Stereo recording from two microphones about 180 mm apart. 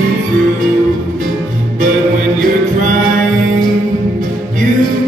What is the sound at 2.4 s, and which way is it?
Music, 45° right (ahead or behind).